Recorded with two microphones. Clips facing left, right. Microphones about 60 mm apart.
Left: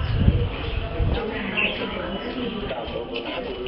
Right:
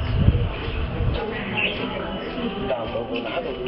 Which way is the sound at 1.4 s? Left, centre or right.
Centre.